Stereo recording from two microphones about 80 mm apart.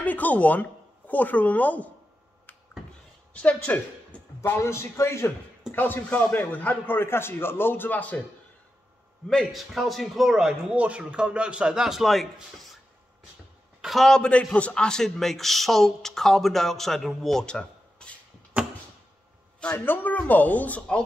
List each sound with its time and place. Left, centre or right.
0.0 s speech: left
3.3 s a woman's voice: centre
4.6 s a man's voice: left
5.7 s a man's voice: left
9.3 s a man's voice: centre
13.7 s a man's voice: centre
19.6 s a man's voice: left